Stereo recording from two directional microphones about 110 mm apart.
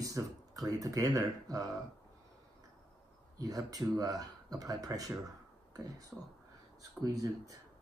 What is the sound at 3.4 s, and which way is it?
Speech, 35° right (ahead or behind).